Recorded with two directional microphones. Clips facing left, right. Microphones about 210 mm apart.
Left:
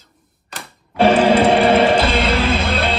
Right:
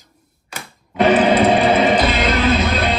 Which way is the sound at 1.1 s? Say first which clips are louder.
Even; 30° left (ahead or behind).